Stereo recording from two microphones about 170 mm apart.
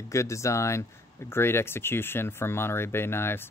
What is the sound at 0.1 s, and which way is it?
Speech, 15° left (ahead or behind).